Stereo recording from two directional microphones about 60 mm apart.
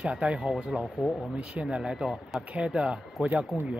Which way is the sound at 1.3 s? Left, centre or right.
Centre.